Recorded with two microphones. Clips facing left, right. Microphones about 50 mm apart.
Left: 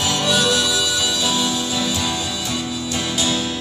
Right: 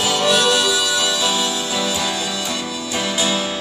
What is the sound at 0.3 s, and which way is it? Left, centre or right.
Harmonica, centre.